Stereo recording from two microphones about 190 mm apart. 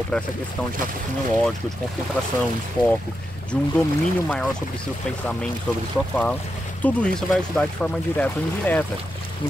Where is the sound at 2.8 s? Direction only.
25° left (ahead or behind).